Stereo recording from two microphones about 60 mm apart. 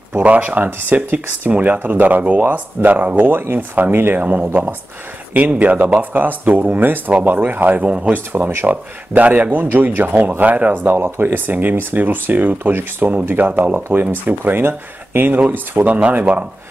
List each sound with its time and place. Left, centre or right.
0.2 s speech: right
0.7 s speech: right
0.9 s speech: right
4.2 s speech: right
7.8 s speech: centre
8.1 s speech: right
11.0 s speech: right
11.2 s speech: right